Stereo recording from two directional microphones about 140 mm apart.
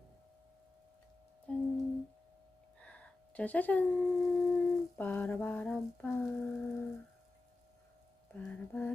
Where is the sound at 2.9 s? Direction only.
10° left (ahead or behind).